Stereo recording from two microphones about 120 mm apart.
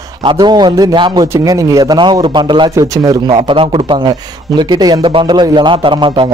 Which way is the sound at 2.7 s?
30° right (ahead or behind).